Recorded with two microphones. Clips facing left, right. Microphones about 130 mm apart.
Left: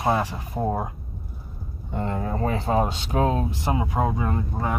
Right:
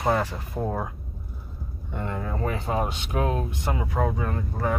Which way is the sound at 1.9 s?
35° left (ahead or behind).